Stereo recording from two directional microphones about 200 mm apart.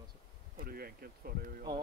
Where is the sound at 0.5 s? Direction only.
50° right (ahead or behind).